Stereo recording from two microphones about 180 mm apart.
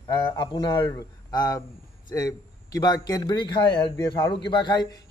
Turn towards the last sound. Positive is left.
turn(degrees=25)  # may be behind; listen again after turning